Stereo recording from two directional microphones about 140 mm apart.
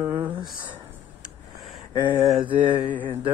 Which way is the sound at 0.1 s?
35° right (ahead or behind).